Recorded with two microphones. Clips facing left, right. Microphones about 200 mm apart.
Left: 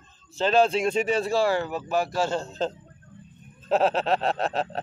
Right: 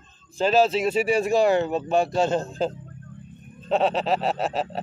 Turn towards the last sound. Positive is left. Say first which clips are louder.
# right 1 dB
turn(degrees=0)  # may be behind; listen again after turning